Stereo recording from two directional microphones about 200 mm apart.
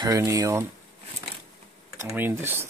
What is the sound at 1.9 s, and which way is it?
Speech, 10° right (ahead or behind).